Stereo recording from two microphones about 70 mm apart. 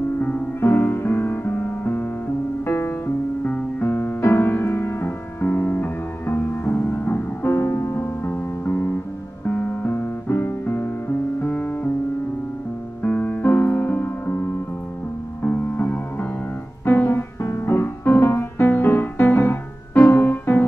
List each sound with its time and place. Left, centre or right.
0.6 s music: left
13.0 s music: left